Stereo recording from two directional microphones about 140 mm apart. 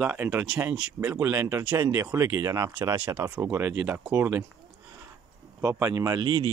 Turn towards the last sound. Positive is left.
turn(degrees=-25)  # may be behind; listen again after turning